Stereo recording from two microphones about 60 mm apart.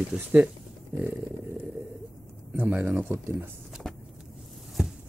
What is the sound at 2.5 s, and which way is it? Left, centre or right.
Speech, right.